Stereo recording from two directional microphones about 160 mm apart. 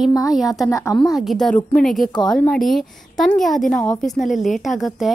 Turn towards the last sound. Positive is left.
turn(degrees=0)  # may be behind; listen again after turning